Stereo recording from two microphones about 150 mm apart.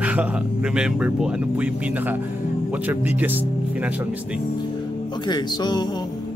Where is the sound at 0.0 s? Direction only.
10° right (ahead or behind).